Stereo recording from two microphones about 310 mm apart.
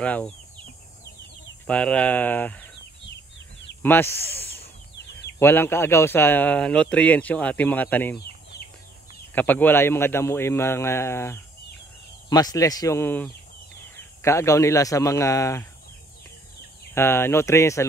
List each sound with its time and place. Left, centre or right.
0.0 s a man's voice: centre
1.7 s a man's voice: centre
3.8 s a man's voice: centre
8.5 s a sound: left
9.3 s a man's voice: centre
16.9 s a man's voice: centre